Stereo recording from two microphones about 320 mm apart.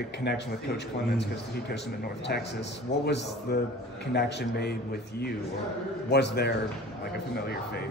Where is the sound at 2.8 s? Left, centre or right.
Left.